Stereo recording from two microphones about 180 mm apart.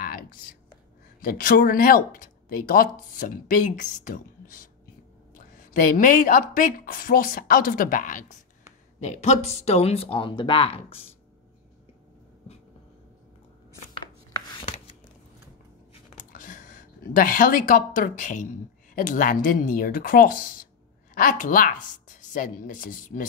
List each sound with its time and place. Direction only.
0.0 s whispering: 55° left (ahead or behind)
1.2 s a woman's voice: 50° left (ahead or behind)
5.9 s a woman's voice: 50° left (ahead or behind); by 11.0 s 35° left (ahead or behind)
14.3 s chopping: 25° left (ahead or behind)
16.3 s a woman's voice: 50° left (ahead or behind)